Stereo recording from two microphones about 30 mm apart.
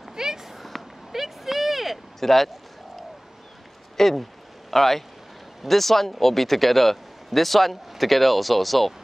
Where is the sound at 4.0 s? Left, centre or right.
Centre.